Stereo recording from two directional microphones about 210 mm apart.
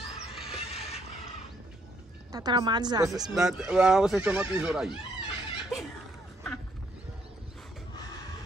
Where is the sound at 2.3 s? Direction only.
20° right (ahead or behind).